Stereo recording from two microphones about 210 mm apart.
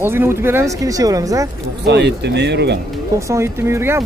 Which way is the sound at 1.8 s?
55° right (ahead or behind).